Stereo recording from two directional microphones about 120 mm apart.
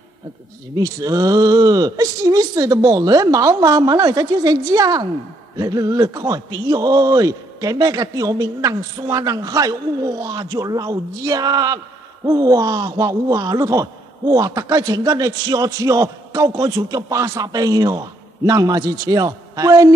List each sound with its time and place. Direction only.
0.7 s speech: 30° right (ahead or behind)